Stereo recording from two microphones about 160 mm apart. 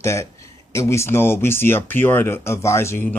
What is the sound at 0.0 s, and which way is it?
Speech, 15° left (ahead or behind).